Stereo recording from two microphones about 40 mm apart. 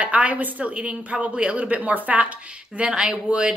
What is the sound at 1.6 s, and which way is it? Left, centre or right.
Speech, right.